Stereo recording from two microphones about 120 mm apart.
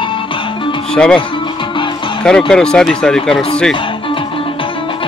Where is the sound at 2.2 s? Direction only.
5° left (ahead or behind).